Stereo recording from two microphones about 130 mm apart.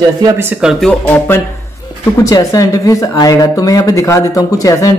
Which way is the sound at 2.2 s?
25° left (ahead or behind).